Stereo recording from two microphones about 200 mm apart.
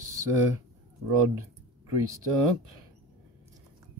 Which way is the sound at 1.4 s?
15° right (ahead or behind).